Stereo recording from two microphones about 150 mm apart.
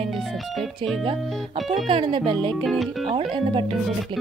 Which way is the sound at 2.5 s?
Centre (ahead or behind).